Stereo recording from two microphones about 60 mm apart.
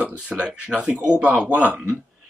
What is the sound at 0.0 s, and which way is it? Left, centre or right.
Speech, centre.